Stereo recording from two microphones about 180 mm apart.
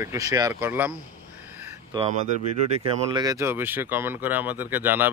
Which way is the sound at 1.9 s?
25° right (ahead or behind).